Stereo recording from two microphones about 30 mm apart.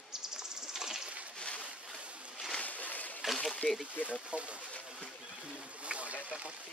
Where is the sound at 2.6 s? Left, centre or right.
Left.